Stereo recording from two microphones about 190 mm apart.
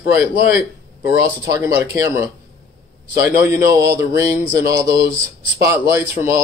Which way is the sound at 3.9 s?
15° right (ahead or behind).